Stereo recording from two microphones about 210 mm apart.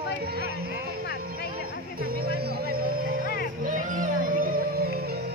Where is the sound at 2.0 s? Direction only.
45° right (ahead or behind).